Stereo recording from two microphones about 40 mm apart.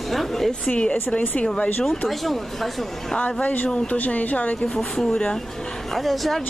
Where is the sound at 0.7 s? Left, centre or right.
Left.